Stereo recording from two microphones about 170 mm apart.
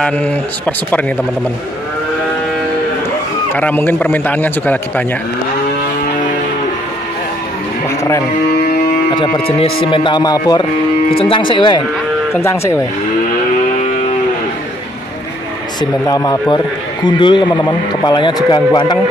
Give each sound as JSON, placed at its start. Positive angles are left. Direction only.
{"t": 0.0, "sound": "a man's voice", "side_deg": 10}
{"t": 3.5, "sound": "a man's voice", "side_deg": 10}
{"t": 9.1, "sound": "a man's voice", "side_deg": 25}
{"t": 12.4, "sound": "a man's voice", "side_deg": 15}
{"t": 15.8, "sound": "a man's voice", "side_deg": 25}